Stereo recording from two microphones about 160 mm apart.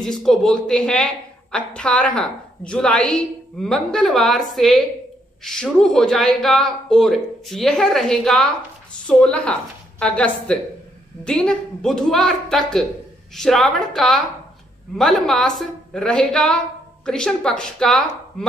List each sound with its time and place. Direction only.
0.0 s a woman's voice: 5° left (ahead or behind)